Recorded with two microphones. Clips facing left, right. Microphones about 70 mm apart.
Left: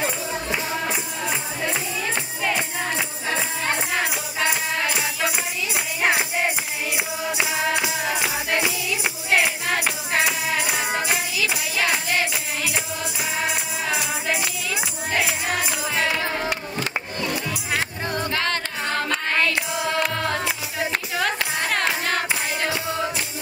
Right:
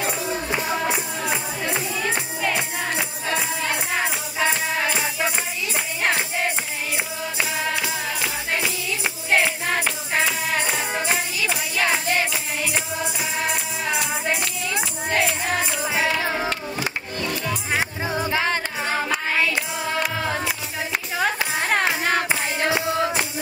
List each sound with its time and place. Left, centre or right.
0.5 s music: right
4.8 s music: centre
7.3 s music: centre
16.2 s music: centre
17.7 s music: centre